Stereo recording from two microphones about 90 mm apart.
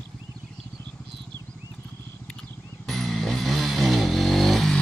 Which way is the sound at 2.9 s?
5° left (ahead or behind).